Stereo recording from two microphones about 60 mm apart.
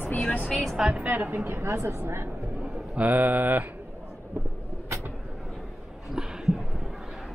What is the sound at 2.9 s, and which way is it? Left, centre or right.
Speech, right.